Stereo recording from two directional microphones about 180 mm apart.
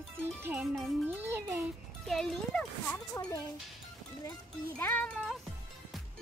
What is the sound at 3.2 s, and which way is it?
Speech, 20° left (ahead or behind).